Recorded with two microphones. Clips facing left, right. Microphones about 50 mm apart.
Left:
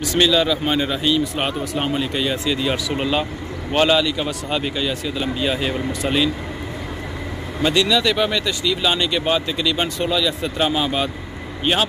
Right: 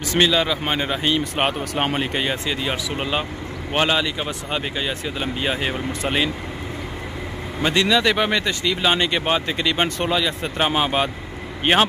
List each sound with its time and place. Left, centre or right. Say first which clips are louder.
0.2 s speech: left 2 dB; right
1.2 s speech: even; right
7.6 s speech: even; right